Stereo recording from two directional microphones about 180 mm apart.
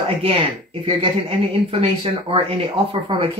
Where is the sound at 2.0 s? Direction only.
30° right (ahead or behind).